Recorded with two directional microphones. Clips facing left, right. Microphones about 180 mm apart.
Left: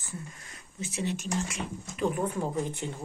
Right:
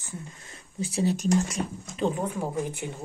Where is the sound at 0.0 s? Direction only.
30° right (ahead or behind).